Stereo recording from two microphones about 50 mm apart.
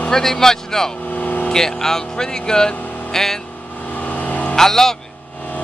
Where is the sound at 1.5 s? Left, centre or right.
Centre.